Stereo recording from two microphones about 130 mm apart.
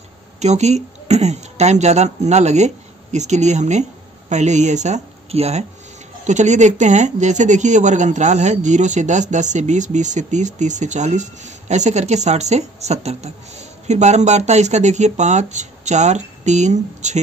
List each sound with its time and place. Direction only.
0.4 s speech: 60° right (ahead or behind)
6.2 s speech: 65° right (ahead or behind)